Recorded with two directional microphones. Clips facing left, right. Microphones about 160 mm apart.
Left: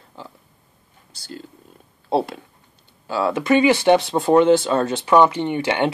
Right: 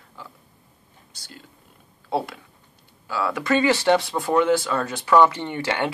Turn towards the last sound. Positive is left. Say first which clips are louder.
# left 5 dB
turn(degrees=20)  # may be behind; listen again after turning